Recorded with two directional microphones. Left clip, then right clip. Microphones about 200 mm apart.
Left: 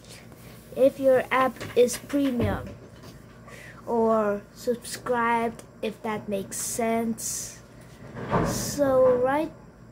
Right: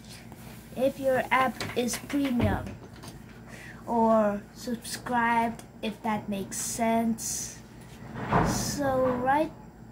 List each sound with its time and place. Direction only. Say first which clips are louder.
0.7 s speech: left 6 dB; 15° left (ahead or behind)
4.0 s speech: even; 15° left (ahead or behind)